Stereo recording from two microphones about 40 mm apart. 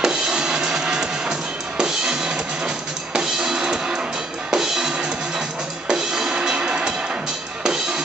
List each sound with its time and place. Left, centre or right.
0.0 s music: centre
6.3 s music: right